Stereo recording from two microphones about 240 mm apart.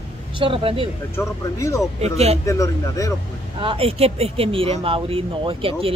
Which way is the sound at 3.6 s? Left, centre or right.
Right.